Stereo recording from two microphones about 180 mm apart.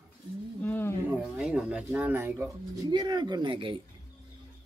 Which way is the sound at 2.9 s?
25° right (ahead or behind).